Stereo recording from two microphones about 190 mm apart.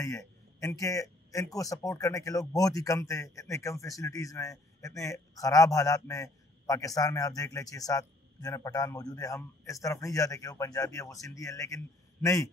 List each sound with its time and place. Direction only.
0.0 s speech: 15° left (ahead or behind)